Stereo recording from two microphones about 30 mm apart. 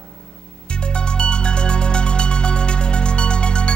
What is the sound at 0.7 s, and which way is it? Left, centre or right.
Music, left.